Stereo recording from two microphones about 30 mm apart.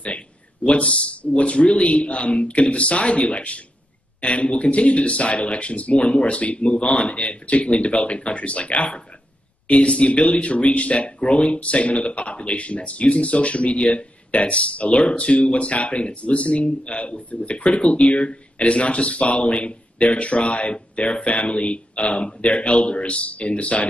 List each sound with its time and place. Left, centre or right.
0.8 s speech: left
11.1 s speech: left